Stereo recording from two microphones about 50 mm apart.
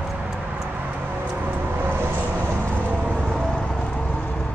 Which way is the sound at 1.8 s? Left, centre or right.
Right.